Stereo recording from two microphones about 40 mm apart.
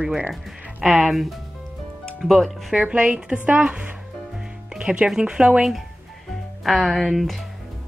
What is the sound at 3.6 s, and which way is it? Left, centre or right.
Speech, right.